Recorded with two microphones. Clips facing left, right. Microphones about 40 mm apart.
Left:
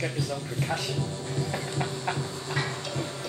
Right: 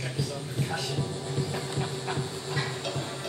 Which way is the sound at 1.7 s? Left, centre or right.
Left.